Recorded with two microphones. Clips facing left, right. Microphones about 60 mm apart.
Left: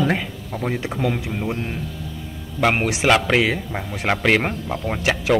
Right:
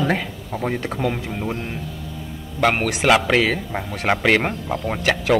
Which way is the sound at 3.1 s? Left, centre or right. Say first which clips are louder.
Right 1 dB; centre.